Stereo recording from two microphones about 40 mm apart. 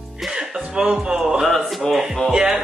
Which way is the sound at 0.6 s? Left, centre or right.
Right.